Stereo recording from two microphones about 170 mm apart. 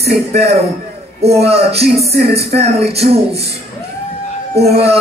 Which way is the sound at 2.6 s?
35° right (ahead or behind).